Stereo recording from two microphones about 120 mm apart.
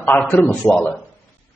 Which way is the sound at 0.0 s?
15° left (ahead or behind).